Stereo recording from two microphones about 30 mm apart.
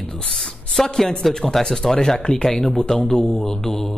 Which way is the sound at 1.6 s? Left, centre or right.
Left.